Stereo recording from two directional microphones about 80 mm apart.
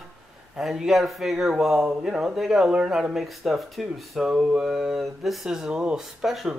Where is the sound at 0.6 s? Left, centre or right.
Centre.